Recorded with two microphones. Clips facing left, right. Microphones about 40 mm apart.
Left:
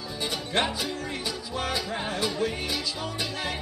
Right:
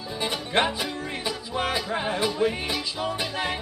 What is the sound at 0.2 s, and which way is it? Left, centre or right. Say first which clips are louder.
Music: right 3 dB; right.